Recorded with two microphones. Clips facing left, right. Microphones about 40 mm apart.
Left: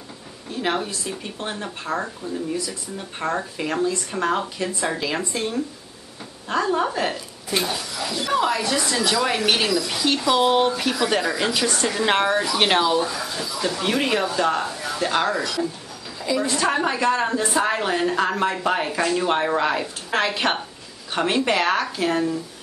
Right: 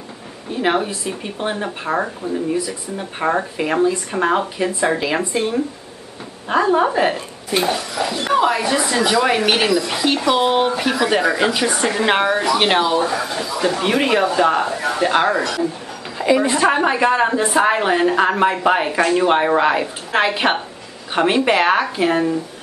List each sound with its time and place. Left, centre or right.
0.5 s speech: right
7.6 s speech: right; by 12.9 s centre
12.9 s speech: right
14.7 s speech: right
15.0 s speech: right